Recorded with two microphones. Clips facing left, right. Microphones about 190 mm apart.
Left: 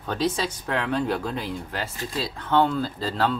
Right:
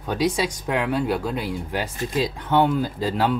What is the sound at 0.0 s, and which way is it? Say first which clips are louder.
Speech: right 3 dB; 10° right (ahead or behind).